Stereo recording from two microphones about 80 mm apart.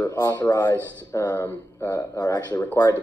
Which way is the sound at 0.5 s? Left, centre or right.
Left.